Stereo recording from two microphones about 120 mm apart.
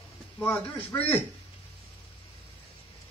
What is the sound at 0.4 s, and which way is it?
Speech, 15° left (ahead or behind).